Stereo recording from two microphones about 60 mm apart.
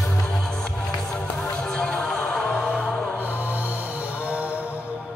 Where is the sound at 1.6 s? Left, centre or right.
Centre.